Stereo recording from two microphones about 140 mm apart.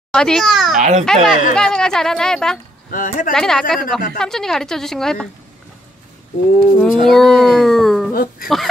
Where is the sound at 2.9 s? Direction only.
75° left (ahead or behind).